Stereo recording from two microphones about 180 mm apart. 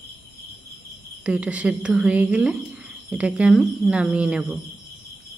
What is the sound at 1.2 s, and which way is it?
A woman's voice, 5° right (ahead or behind).